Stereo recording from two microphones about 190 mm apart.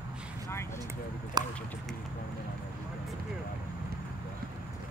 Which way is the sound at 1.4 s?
20° right (ahead or behind).